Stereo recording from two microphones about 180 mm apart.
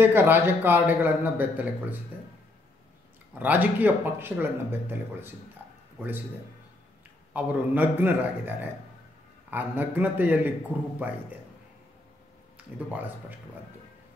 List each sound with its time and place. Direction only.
0.0 s a man's voice: 10° right (ahead or behind)
3.3 s a man's voice: 10° right (ahead or behind)
7.3 s a man's voice: 10° right (ahead or behind)
12.5 s speech: 10° right (ahead or behind)